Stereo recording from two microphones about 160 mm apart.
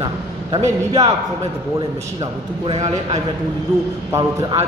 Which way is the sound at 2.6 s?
40° right (ahead or behind).